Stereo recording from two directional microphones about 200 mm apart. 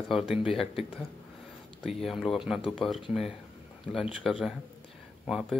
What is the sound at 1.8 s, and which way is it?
Speech, centre (ahead or behind).